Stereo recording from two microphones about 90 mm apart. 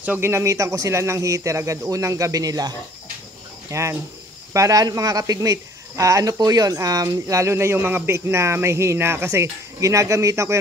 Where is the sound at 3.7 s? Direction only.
35° right (ahead or behind).